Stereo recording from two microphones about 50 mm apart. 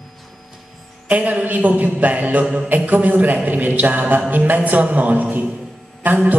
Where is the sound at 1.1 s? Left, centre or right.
Right.